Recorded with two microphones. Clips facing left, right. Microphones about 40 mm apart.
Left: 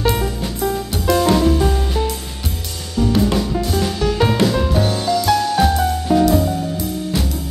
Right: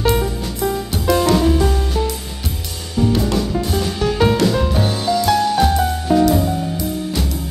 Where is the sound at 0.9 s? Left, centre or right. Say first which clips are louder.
Even; centre.